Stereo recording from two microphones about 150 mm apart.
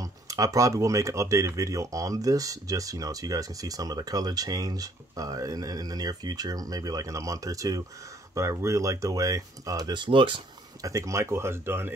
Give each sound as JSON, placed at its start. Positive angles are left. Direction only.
{"t": 0.0, "sound": "speech", "side_deg": -20}
{"t": 10.8, "sound": "speech", "side_deg": -20}